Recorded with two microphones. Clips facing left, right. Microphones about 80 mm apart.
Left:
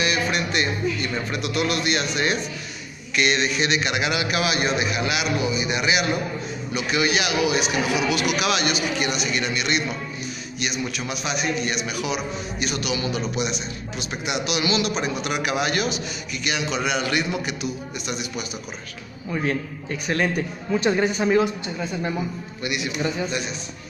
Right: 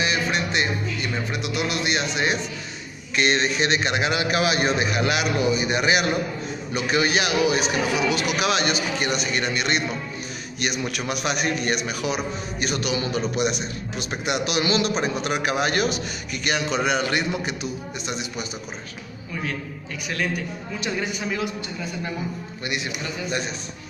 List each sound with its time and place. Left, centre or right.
0.0 s speech: right
3.2 s speech: right
10.6 s a man's voice: right
13.5 s a man's voice: right
20.8 s speech: left